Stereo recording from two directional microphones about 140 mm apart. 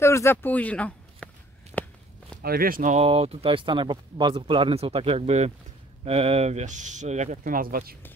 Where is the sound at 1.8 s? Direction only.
10° left (ahead or behind).